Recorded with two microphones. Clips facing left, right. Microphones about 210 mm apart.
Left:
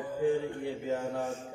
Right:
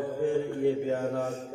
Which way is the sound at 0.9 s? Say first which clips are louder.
Right 3 dB; 60° right (ahead or behind).